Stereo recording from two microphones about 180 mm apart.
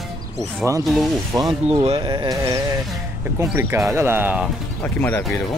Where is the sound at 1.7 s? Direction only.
30° right (ahead or behind); by 4.5 s 10° right (ahead or behind).